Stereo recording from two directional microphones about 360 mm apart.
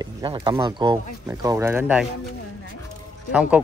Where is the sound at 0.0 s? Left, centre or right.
Centre.